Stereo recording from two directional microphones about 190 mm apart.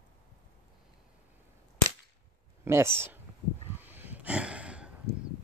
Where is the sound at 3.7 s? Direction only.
10° right (ahead or behind).